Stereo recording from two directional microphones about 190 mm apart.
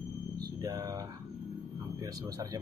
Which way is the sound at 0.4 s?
20° right (ahead or behind).